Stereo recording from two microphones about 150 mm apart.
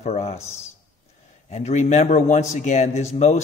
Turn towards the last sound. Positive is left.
turn(degrees=45)  # may be behind; listen again after turning